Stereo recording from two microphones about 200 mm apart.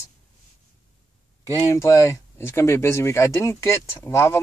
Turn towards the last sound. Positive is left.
turn(degrees=15)  # may be behind; listen again after turning